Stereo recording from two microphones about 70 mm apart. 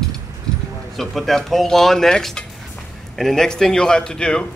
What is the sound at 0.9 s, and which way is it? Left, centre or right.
A man's voice, centre.